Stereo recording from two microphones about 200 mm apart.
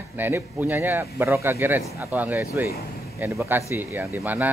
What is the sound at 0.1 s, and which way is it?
Speech, 10° right (ahead or behind).